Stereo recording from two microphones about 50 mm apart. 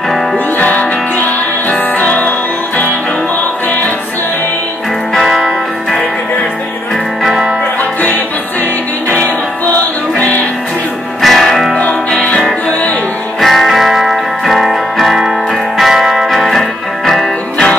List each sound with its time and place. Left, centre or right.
0.6 s music: left
5.1 s music: centre
7.2 s music: centre
9.1 s music: left
11.1 s music: centre
12.1 s music: left
13.4 s music: centre